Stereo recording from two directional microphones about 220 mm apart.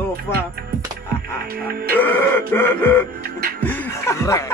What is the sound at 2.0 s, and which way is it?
Speech, 10° left (ahead or behind).